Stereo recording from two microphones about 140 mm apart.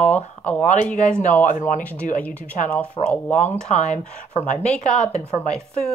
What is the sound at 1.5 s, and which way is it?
Speech, 70° left (ahead or behind).